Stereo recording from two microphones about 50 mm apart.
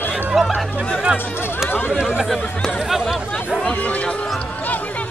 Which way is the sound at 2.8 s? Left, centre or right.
Centre.